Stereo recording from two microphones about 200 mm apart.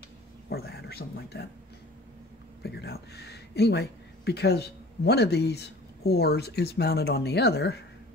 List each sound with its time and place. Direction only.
0.5 s speech: 55° left (ahead or behind)
2.6 s speech: 55° left (ahead or behind)